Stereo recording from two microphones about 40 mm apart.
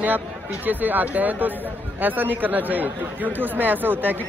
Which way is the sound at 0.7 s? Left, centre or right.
Right.